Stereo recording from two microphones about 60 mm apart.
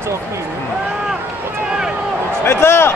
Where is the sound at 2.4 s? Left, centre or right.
Left.